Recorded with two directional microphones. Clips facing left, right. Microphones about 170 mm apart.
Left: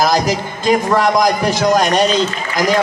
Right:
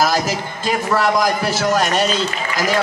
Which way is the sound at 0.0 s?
15° left (ahead or behind).